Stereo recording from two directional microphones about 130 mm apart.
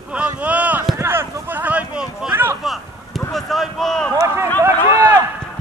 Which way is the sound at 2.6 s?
Centre (ahead or behind).